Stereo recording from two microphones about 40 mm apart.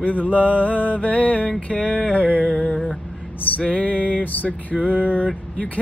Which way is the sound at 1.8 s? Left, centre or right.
Right.